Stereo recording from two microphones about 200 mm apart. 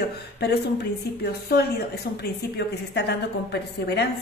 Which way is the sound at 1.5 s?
55° left (ahead or behind).